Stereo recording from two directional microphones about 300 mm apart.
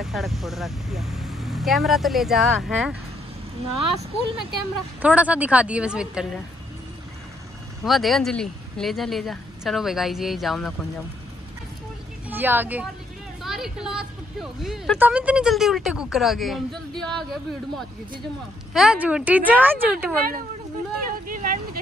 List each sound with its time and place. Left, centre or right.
0.0 s speech: centre
7.8 s speech: centre
12.3 s speech: centre
21.3 s vehicle: right